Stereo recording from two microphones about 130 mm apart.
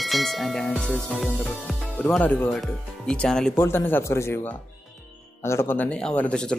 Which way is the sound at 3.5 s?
20° left (ahead or behind).